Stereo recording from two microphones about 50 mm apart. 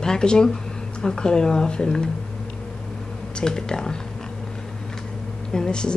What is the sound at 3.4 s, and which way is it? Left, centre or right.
Speech, centre.